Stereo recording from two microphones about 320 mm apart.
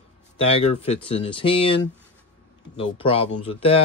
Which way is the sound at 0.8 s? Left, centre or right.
Centre.